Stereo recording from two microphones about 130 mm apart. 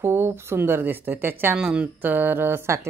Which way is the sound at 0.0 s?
20° right (ahead or behind).